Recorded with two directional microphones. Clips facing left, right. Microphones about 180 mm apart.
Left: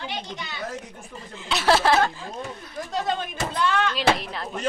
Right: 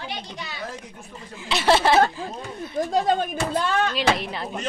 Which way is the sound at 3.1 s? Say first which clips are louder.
Right 5 dB; 45° right (ahead or behind).